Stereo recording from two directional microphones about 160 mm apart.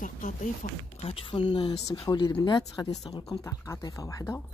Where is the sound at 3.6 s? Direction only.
20° left (ahead or behind).